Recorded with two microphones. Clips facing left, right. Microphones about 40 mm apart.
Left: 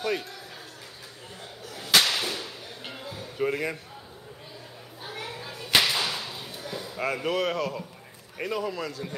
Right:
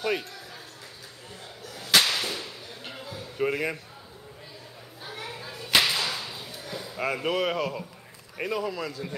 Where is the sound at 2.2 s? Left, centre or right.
Centre.